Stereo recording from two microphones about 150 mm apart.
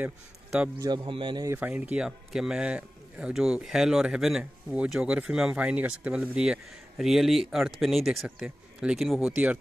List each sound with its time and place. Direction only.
0.0 s a man's voice: 10° right (ahead or behind)
0.7 s speech: 30° right (ahead or behind)
1.5 s speech: 10° right (ahead or behind)